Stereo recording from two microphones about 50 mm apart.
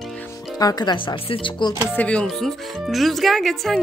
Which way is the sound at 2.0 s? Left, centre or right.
Left.